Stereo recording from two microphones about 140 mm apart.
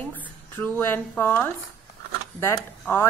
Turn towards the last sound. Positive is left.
turn(degrees=15)  # may be behind; listen again after turning